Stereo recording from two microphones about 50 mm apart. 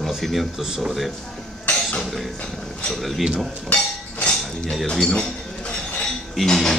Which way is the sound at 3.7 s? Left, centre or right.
Left.